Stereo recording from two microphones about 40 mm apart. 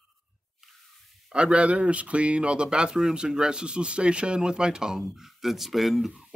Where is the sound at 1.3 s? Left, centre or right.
Right.